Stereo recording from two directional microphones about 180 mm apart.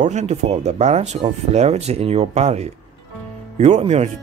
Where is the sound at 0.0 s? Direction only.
40° right (ahead or behind).